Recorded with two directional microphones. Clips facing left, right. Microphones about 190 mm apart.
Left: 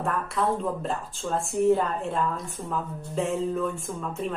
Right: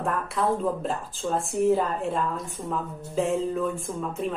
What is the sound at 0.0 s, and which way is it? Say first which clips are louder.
Speech: even; centre (ahead or behind).